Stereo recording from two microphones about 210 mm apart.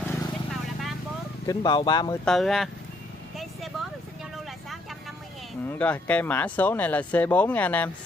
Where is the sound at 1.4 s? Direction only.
20° left (ahead or behind).